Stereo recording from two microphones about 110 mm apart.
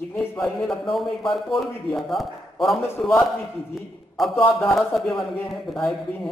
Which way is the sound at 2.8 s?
15° left (ahead or behind).